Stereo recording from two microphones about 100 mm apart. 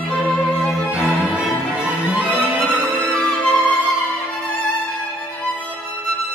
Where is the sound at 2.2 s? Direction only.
15° right (ahead or behind).